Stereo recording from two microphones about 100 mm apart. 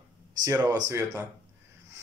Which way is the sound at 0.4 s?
40° right (ahead or behind).